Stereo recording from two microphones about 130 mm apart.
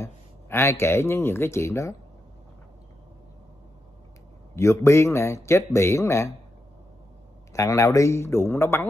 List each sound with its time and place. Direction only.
0.0 s speech: 20° left (ahead or behind)
4.6 s speech: 20° left (ahead or behind)
7.5 s speech: 25° left (ahead or behind)